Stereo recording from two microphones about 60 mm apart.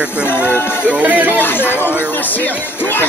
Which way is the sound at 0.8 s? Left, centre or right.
Right.